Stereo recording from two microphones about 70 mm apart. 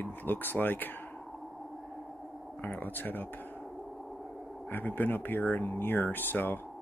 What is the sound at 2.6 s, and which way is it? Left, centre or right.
Speech, left.